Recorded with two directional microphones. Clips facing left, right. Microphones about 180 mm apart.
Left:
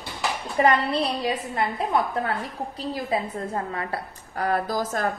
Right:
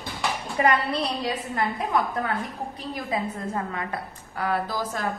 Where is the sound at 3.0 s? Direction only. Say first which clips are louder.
Even; 35° left (ahead or behind).